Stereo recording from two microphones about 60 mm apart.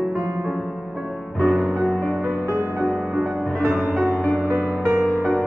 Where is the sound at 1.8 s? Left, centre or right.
Left.